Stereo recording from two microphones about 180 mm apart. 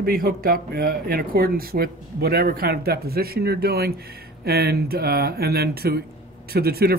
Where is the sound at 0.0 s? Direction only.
55° right (ahead or behind).